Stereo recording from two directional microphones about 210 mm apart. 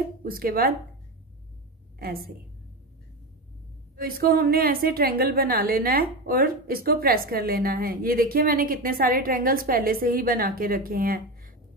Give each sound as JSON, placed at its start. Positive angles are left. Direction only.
{"t": 0.2, "sound": "a woman's voice", "side_deg": -45}
{"t": 2.0, "sound": "a woman's voice", "side_deg": -45}
{"t": 3.9, "sound": "a woman's voice", "side_deg": -45}